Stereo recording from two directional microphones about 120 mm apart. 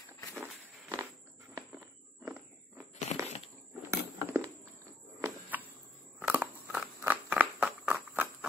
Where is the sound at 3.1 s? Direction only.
60° left (ahead or behind).